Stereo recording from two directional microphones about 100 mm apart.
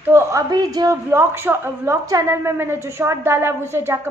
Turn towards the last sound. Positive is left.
turn(degrees=-25)  # may be behind; listen again after turning